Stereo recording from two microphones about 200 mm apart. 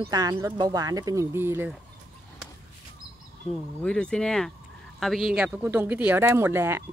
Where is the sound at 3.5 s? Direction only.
5° left (ahead or behind).